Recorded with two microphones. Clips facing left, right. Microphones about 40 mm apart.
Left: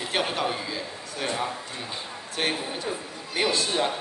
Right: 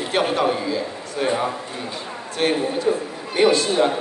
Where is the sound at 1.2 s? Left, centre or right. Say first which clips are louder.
Right 7 dB; centre.